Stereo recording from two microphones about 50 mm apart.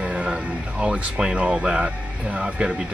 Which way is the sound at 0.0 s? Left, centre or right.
Right.